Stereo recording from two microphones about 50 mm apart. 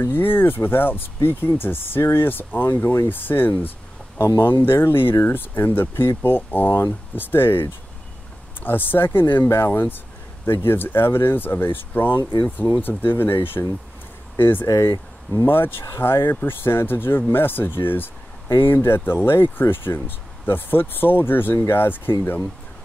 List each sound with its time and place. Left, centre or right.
0.0 s speech: left
14.7 s speech: left
15.4 s speech: left
22.1 s speech: left